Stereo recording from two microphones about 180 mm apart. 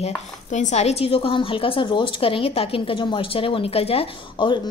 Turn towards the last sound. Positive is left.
turn(degrees=30)  # may be behind; listen again after turning